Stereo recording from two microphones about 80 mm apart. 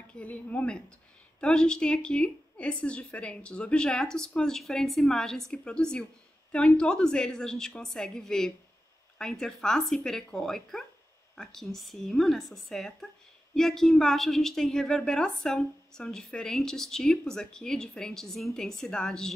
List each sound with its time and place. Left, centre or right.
0.1 s a woman's voice: centre